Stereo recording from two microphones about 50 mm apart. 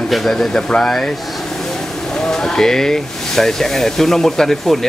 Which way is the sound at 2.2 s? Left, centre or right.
Centre.